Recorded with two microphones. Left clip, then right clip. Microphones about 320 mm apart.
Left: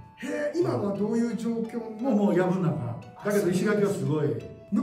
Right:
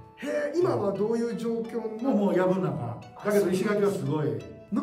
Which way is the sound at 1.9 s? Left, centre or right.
Centre.